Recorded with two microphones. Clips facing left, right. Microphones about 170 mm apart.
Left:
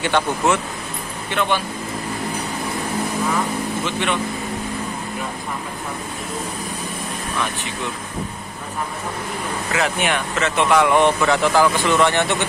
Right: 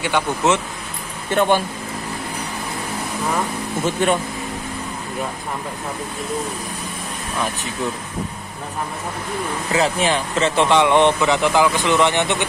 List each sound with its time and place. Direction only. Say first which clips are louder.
0.4 s speech: right 2 dB; 20° right (ahead or behind)
1.3 s speech: right 5 dB; 45° right (ahead or behind)
3.8 s speech: right 7 dB; 45° right (ahead or behind)
9.7 s speech: right 3 dB; 30° right (ahead or behind)